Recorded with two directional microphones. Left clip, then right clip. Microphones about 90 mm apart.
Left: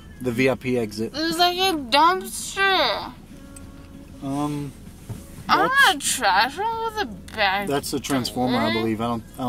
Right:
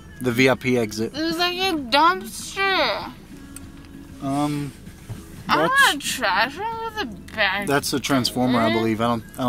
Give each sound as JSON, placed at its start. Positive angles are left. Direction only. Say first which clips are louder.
{"t": 0.2, "sound": "speech", "louder": "right 3 dB", "side_deg": -40}
{"t": 1.1, "sound": "a woman's voice", "louder": "left 4 dB", "side_deg": 5}
{"t": 4.2, "sound": "speech", "louder": "right 3 dB", "side_deg": -35}
{"t": 5.5, "sound": "speech", "louder": "even", "side_deg": 10}
{"t": 7.6, "sound": "speech", "louder": "right 3 dB", "side_deg": -35}
{"t": 8.5, "sound": "speech", "louder": "right 2 dB", "side_deg": 5}
{"t": 8.8, "sound": "speech", "louder": "right 3 dB", "side_deg": -35}